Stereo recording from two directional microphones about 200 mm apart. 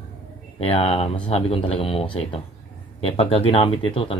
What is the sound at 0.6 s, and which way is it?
Speech, 30° left (ahead or behind).